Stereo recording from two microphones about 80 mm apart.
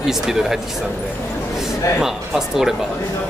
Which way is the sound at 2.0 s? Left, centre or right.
Centre.